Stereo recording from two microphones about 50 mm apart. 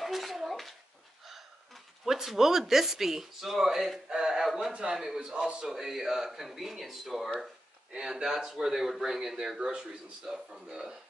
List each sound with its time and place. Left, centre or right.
0.0 s a sound: centre
1.2 s speech: centre
4.2 s a sound: centre
4.9 s speech: centre
7.9 s speech: centre
9.6 s a man's voice: right
10.2 s speech: centre